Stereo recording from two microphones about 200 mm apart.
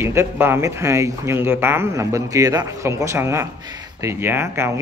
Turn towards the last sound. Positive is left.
turn(degrees=-15)  # may be behind; listen again after turning